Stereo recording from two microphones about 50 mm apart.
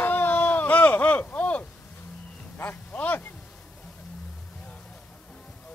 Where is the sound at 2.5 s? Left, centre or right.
Left.